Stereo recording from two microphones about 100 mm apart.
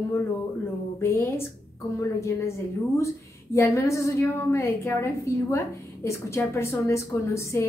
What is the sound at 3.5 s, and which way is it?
Speech, 30° left (ahead or behind).